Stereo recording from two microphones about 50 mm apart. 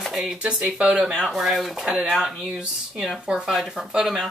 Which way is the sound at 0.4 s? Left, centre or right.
Centre.